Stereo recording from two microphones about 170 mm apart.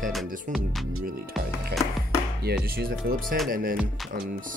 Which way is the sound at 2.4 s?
65° right (ahead or behind).